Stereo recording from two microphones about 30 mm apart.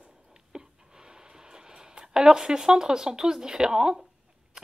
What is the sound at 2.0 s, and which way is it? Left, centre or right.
Speech, right.